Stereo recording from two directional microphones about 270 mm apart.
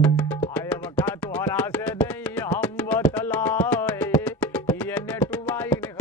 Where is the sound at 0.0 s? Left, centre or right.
Centre.